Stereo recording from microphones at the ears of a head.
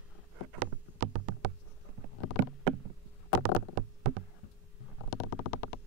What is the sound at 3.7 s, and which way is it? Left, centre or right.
Knock, right.